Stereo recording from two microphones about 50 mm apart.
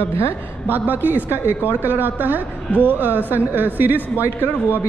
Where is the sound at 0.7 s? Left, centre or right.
Right.